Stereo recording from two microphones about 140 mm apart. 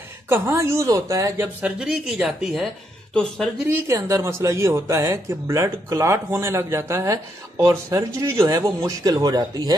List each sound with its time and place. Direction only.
0.3 s speech: 20° right (ahead or behind)
1.6 s a woman's voice: 10° right (ahead or behind)
3.6 s speech: 20° right (ahead or behind)